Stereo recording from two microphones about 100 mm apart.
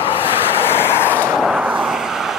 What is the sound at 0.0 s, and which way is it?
Vehicle, 65° left (ahead or behind).